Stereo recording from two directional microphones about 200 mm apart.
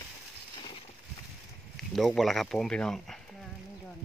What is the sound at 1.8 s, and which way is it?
Speech, centre (ahead or behind).